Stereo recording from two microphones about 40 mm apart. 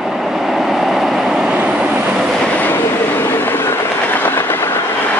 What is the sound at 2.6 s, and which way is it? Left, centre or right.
Train, left.